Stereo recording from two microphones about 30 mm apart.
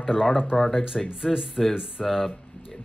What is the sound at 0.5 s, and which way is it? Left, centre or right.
Speech, left.